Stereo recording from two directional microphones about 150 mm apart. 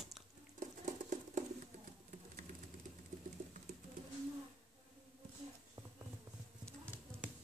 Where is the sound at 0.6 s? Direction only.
55° right (ahead or behind).